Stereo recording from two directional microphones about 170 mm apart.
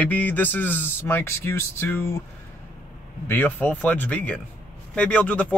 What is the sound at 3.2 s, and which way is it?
A man's voice, 10° left (ahead or behind).